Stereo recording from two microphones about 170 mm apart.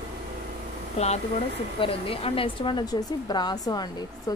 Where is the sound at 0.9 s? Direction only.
40° left (ahead or behind); by 4.4 s 25° left (ahead or behind).